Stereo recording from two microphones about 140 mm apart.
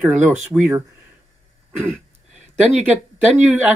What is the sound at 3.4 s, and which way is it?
Speech, 10° right (ahead or behind).